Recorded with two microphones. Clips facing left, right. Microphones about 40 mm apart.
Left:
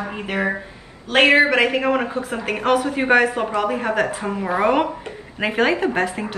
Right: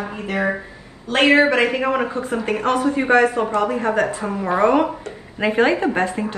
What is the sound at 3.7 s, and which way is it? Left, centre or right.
Speech, left.